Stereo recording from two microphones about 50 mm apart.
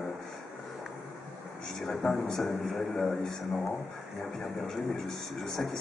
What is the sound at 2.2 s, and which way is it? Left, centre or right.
Speech, centre.